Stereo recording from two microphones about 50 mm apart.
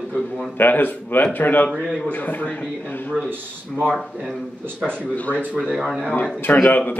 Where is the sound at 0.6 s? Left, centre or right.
Left.